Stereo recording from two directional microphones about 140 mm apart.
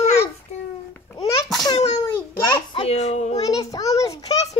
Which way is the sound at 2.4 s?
35° left (ahead or behind).